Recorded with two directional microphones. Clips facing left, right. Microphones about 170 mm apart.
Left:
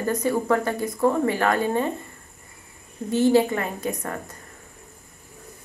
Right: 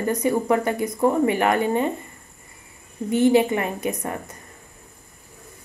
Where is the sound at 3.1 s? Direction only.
20° right (ahead or behind).